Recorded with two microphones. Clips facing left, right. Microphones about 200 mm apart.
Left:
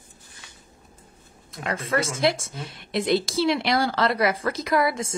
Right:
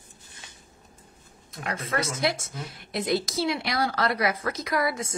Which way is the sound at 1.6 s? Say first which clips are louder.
Left 4 dB; 30° left (ahead or behind).